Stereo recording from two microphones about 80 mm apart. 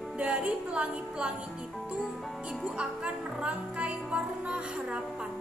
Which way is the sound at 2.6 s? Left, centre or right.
Centre.